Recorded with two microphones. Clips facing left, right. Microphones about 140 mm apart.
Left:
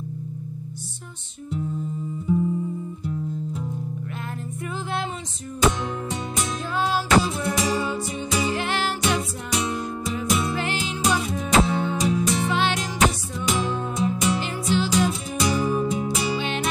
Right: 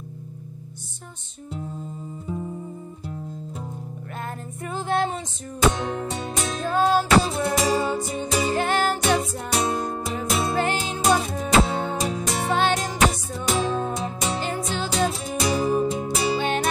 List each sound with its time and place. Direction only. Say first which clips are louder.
4.6 s music: right 5 dB; 45° right (ahead or behind)
6.6 s music: right 6 dB; 45° right (ahead or behind)
7.2 s music: right 2 dB; 35° right (ahead or behind)